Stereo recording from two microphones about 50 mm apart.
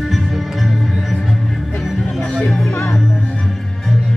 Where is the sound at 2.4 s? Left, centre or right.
Centre.